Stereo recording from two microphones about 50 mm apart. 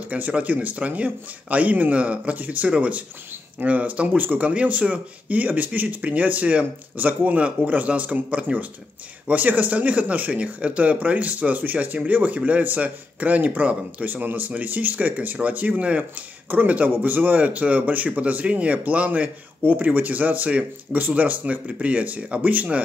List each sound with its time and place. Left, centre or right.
0.1 s a man's voice: right